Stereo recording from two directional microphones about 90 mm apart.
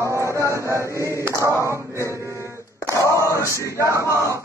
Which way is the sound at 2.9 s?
35° left (ahead or behind).